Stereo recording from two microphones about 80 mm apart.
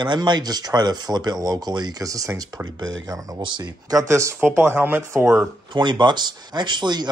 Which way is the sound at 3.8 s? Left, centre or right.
Right.